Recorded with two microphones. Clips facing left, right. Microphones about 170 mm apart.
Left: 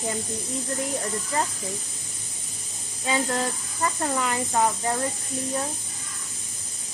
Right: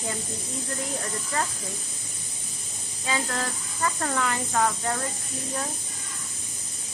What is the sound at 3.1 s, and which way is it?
Speech, 20° left (ahead or behind).